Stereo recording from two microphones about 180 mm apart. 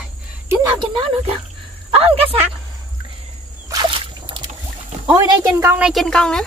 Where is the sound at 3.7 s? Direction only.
25° right (ahead or behind).